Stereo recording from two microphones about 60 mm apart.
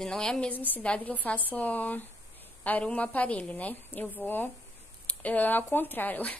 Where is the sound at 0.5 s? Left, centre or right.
Left.